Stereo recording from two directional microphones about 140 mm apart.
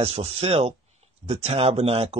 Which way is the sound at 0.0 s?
45° right (ahead or behind).